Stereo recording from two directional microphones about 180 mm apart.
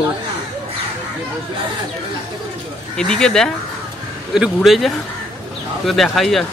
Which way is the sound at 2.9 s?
5° left (ahead or behind).